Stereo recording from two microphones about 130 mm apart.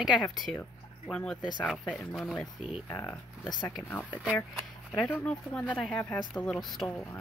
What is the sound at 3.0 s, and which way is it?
Speech, 10° left (ahead or behind).